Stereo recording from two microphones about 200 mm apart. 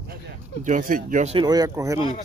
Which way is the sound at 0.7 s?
40° right (ahead or behind).